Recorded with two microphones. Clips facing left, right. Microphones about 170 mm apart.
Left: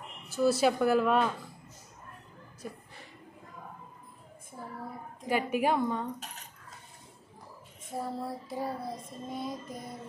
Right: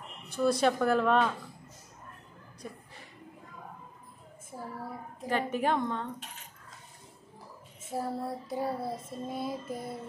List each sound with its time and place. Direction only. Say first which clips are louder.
0.3 s child singing: left 1 dB; 5° left (ahead or behind)
5.3 s a woman's voice: left 1 dB; 10° left (ahead or behind)
7.9 s child singing: right 2 dB; centre (ahead or behind)